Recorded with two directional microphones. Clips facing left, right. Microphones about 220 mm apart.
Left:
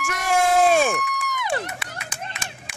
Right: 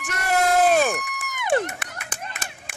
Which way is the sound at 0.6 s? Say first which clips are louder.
Left 1 dB; centre (ahead or behind).